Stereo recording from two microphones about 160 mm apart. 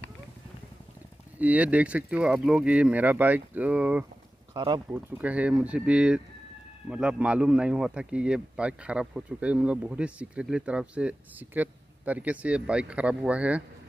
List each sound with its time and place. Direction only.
1.4 s speech: 10° right (ahead or behind)
4.6 s speech: 25° right (ahead or behind)
4.9 s speech: 10° right (ahead or behind)